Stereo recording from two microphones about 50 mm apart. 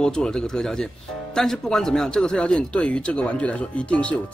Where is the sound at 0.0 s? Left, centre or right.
Centre.